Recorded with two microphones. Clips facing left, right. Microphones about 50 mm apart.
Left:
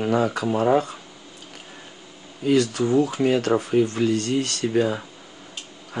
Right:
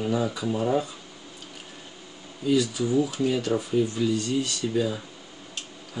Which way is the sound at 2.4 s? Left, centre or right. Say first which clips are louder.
Left 4 dB; left.